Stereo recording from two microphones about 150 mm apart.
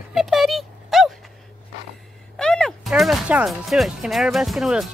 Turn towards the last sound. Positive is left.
turn(degrees=-5)  # may be behind; listen again after turning